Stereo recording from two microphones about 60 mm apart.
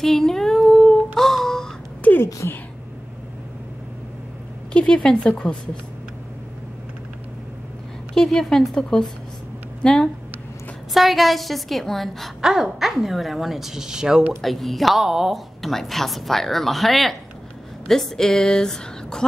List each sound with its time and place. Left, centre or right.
0.0 s female singing: centre
2.0 s a sound: left
4.7 s a woman's voice: centre
8.1 s a woman's voice: centre
10.9 s a woman's voice: centre
12.4 s a woman's voice: centre
14.4 s a woman's voice: centre